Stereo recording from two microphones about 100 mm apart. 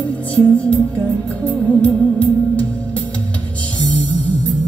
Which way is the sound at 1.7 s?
15° left (ahead or behind).